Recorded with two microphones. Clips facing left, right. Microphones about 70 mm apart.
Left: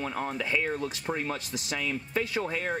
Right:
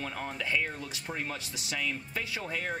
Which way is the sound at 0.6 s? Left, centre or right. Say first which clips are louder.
Left 7 dB; left.